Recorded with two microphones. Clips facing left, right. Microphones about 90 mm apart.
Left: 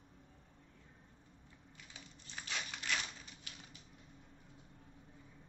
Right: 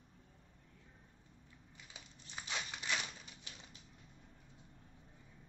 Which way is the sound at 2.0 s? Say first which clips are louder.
Even; 15° right (ahead or behind).